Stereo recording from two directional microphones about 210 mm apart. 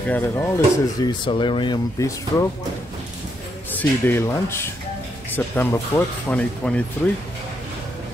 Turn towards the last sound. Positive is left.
turn(degrees=5)  # may be behind; listen again after turning